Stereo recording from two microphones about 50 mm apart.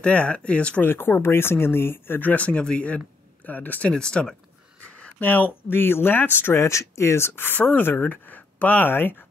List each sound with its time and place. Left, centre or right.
0.0 s speech: left
0.8 s speech: left
3.4 s speech: left
3.9 s speech: centre
5.2 s speech: left
5.7 s speech: left